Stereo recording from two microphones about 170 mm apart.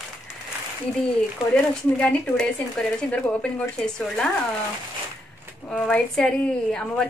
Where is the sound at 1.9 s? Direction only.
5° left (ahead or behind).